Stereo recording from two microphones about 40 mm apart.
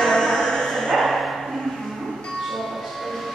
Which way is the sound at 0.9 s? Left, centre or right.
Centre.